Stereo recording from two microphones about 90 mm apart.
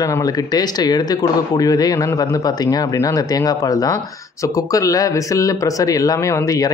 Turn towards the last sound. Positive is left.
turn(degrees=40)  # may be behind; listen again after turning